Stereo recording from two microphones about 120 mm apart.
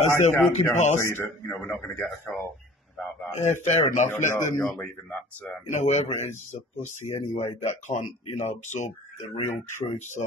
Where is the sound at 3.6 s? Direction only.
70° left (ahead or behind).